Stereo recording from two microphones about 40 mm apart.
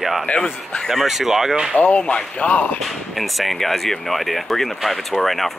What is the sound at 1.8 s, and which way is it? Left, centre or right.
Speech, left.